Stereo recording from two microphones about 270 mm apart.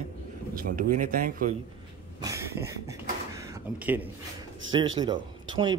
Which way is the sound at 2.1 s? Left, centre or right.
Centre.